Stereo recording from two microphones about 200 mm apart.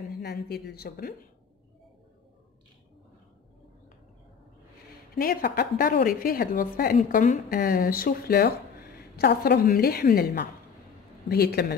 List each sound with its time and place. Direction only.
0.2 s a woman's voice: 55° left (ahead or behind)
5.1 s a woman's voice: 50° left (ahead or behind)